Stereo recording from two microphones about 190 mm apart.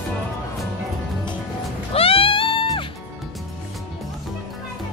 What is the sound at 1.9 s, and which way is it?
Music, 30° left (ahead or behind).